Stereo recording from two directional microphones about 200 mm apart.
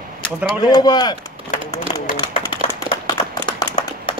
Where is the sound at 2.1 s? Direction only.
25° left (ahead or behind).